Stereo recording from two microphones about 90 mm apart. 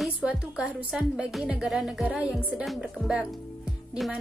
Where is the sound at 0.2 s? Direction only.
10° right (ahead or behind).